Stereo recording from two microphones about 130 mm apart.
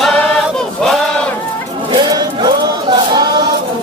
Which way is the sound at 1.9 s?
35° right (ahead or behind).